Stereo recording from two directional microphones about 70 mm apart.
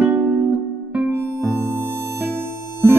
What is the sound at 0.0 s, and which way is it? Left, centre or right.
Music, right.